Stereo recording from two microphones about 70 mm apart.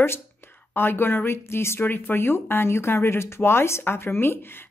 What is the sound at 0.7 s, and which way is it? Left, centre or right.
Speech, left.